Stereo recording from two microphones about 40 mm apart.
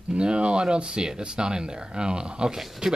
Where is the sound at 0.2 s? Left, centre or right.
Right.